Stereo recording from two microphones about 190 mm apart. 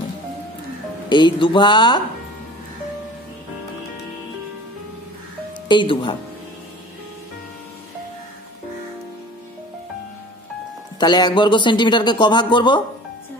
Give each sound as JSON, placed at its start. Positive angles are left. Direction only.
{"t": 1.0, "sound": "a man's voice", "side_deg": 25}
{"t": 5.7, "sound": "a man's voice", "side_deg": 25}
{"t": 11.0, "sound": "a man's voice", "side_deg": 20}